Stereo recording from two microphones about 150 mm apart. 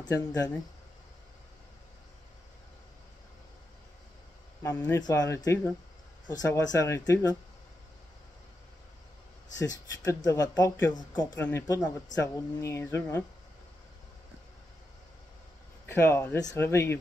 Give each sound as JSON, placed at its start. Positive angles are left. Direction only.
{"t": 0.0, "sound": "speech", "side_deg": 25}
{"t": 4.6, "sound": "speech", "side_deg": 15}
{"t": 5.0, "sound": "speech", "side_deg": 25}
{"t": 9.6, "sound": "speech", "side_deg": 25}
{"t": 15.9, "sound": "speech", "side_deg": 15}